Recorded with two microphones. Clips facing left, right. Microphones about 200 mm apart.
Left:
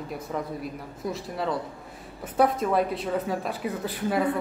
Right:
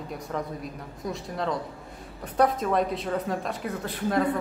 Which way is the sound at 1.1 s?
5° left (ahead or behind).